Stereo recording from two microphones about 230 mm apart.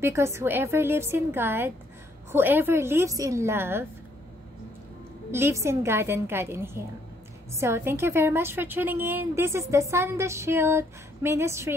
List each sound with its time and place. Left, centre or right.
0.0 s a woman's voice: centre
5.3 s a woman's voice: centre